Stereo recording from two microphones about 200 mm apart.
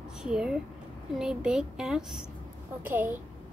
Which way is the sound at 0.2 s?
5° right (ahead or behind).